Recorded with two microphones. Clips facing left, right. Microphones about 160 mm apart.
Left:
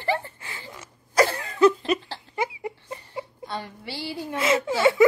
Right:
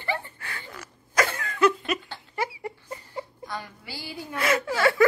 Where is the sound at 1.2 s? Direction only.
35° left (ahead or behind).